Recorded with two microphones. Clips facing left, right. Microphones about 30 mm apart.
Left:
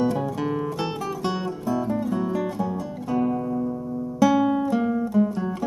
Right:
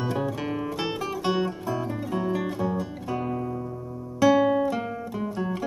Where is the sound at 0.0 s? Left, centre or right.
Centre.